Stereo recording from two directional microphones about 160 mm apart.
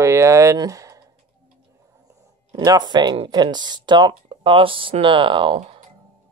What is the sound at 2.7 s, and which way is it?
Speech, 25° right (ahead or behind).